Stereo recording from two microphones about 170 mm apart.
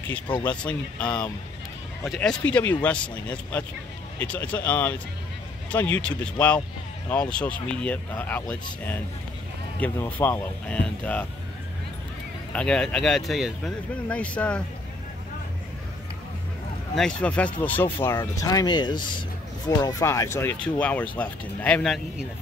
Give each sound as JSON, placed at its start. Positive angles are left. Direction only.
{"t": 0.1, "sound": "speech", "side_deg": 10}
{"t": 9.8, "sound": "speech", "side_deg": 10}
{"t": 12.5, "sound": "speech", "side_deg": 5}
{"t": 16.9, "sound": "speech", "side_deg": 5}